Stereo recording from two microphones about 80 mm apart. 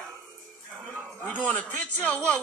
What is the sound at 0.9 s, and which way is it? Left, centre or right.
A man's voice, centre.